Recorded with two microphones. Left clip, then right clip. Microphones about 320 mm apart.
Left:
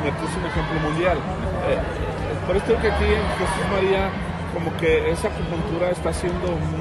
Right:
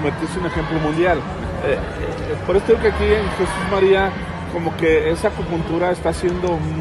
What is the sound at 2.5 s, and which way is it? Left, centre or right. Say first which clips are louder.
Speech: right 5 dB; right.